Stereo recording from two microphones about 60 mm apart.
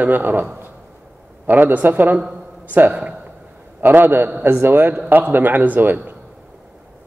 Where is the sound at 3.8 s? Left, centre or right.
Right.